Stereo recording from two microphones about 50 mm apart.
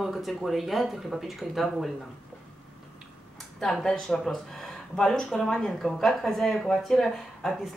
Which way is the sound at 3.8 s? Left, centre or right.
Centre.